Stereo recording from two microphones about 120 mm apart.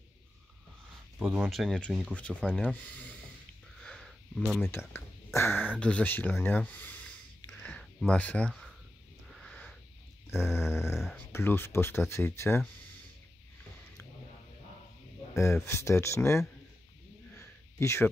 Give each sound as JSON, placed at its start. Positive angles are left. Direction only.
{"t": 1.2, "sound": "speech", "side_deg": -15}
{"t": 1.5, "sound": "speech", "side_deg": 0}
{"t": 2.1, "sound": "speech", "side_deg": 10}
{"t": 3.8, "sound": "sniff", "side_deg": 5}
{"t": 4.6, "sound": "speech", "side_deg": 20}
{"t": 7.6, "sound": "a sound", "side_deg": 5}
{"t": 8.1, "sound": "speech", "side_deg": 10}
{"t": 8.5, "sound": "a sound", "side_deg": 0}
{"t": 9.3, "sound": "wheeze", "side_deg": 5}
{"t": 10.3, "sound": "speech", "side_deg": 20}
{"t": 15.3, "sound": "speech", "side_deg": 20}
{"t": 17.4, "sound": "a sound", "side_deg": 20}